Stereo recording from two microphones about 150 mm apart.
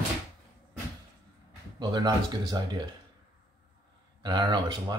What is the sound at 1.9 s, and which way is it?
Speech, 25° right (ahead or behind).